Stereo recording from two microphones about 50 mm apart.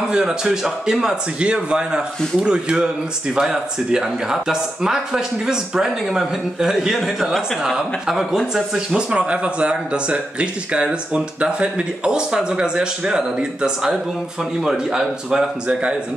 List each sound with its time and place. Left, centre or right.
0.1 s speech: centre
8.7 s speech: right